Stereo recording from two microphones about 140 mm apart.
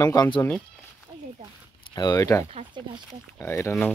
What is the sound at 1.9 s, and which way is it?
Speech, 30° left (ahead or behind).